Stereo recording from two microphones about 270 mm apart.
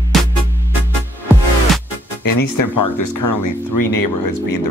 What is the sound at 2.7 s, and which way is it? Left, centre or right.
Speech, left.